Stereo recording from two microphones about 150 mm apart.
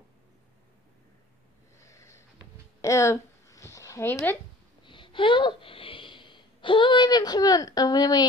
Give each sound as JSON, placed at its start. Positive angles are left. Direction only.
{"t": 1.8, "sound": "snort", "side_deg": 20}
{"t": 2.8, "sound": "a sound", "side_deg": 20}
{"t": 4.8, "sound": "speech", "side_deg": 35}